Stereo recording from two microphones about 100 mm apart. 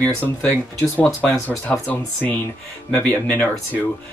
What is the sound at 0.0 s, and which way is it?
Speech, 15° left (ahead or behind).